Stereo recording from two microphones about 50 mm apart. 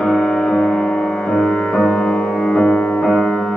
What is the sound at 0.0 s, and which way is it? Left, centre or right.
Music, centre.